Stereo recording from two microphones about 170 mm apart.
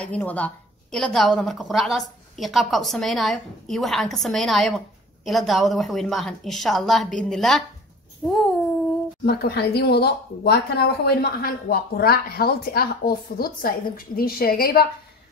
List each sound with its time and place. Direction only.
0.0 s a woman's voice: 10° left (ahead or behind)
9.2 s speech: 70° left (ahead or behind)